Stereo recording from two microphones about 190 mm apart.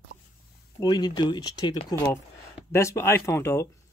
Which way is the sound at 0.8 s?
20° left (ahead or behind).